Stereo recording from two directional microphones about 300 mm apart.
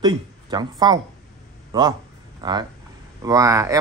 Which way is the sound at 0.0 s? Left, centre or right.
Centre.